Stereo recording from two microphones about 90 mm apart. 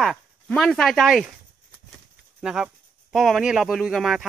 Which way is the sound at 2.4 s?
5° right (ahead or behind).